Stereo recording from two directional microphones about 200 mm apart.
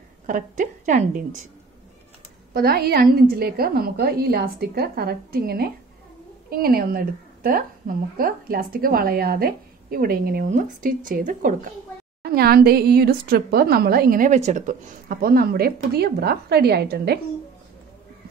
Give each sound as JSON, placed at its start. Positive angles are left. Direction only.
{"t": 0.3, "sound": "a woman's voice", "side_deg": -40}
{"t": 2.5, "sound": "a woman's voice", "side_deg": -50}